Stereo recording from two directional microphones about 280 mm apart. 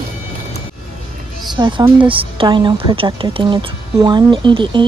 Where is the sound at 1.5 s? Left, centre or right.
Centre.